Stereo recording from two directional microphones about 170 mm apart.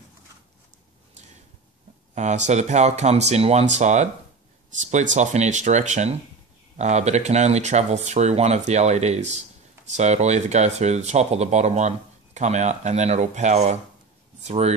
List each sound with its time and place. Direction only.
2.1 s speech: 45° right (ahead or behind)